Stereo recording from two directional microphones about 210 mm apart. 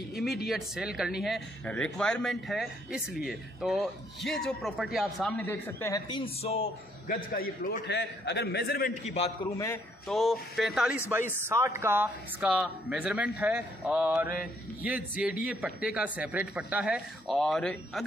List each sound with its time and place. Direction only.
0.1 s speech: centre (ahead or behind); by 6.6 s 30° left (ahead or behind)
7.3 s a man's voice: 40° left (ahead or behind)
9.1 s a man's voice: 25° left (ahead or behind)
10.0 s speech: centre (ahead or behind)
11.4 s speech: 10° right (ahead or behind)